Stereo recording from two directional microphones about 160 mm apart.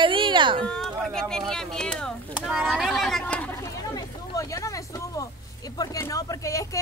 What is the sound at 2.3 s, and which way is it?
Speech, 5° right (ahead or behind).